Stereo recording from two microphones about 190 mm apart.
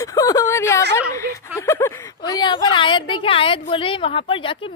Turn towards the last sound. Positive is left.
turn(degrees=25)  # may be behind; listen again after turning